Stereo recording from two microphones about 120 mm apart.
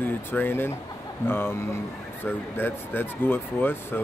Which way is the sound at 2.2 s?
20° left (ahead or behind).